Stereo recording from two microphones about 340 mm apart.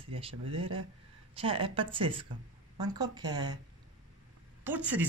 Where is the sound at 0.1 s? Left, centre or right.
Centre.